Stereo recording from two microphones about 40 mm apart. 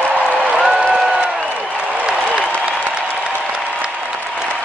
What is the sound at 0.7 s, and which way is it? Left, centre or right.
Applause, right.